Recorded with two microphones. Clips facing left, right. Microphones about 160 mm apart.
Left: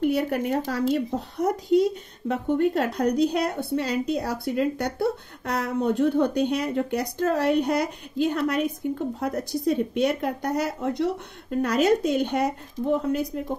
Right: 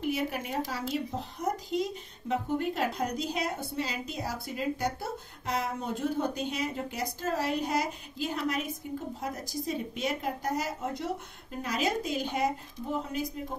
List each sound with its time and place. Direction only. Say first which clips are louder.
0.0 s a woman's voice: left 8 dB; 60° left (ahead or behind)